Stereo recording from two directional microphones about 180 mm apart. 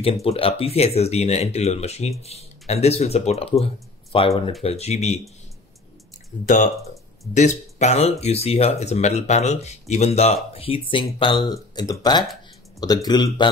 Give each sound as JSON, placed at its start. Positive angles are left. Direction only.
{"t": 0.0, "sound": "speech", "side_deg": 35}
{"t": 6.4, "sound": "speech", "side_deg": 45}